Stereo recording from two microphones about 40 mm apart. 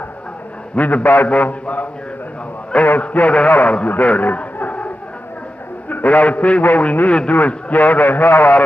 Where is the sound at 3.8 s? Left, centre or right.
Left.